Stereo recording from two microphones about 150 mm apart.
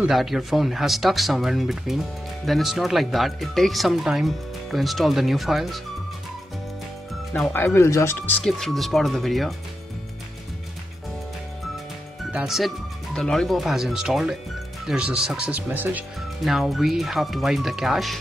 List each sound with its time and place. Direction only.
0.0 s speech: centre (ahead or behind)
7.5 s speech: 15° left (ahead or behind)
8.5 s speech: centre (ahead or behind)
12.3 s speech: 5° right (ahead or behind)
16.4 s speech: centre (ahead or behind)